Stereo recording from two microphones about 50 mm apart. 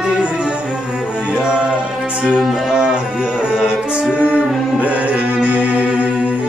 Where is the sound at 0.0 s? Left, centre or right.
Centre.